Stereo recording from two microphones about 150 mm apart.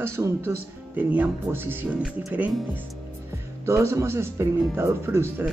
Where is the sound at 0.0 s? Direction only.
15° right (ahead or behind).